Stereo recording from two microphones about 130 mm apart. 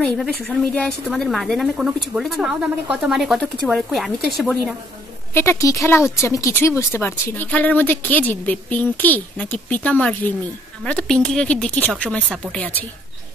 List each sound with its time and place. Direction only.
0.0 s a woman's voice: 5° left (ahead or behind)
5.3 s a woman's voice: 20° left (ahead or behind)